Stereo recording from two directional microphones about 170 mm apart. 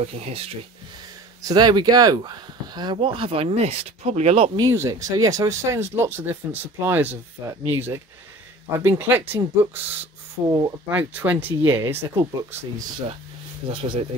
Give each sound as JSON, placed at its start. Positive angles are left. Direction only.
{"t": 0.0, "sound": "speech", "side_deg": -40}
{"t": 1.4, "sound": "speech", "side_deg": -25}
{"t": 4.6, "sound": "speech", "side_deg": -20}
{"t": 10.5, "sound": "speech", "side_deg": -15}
{"t": 13.7, "sound": "speech", "side_deg": -30}